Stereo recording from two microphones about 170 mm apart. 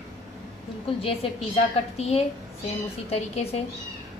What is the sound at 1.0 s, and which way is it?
A woman's voice, 35° left (ahead or behind).